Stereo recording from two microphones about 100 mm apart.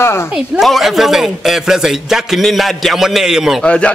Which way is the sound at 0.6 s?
Centre (ahead or behind).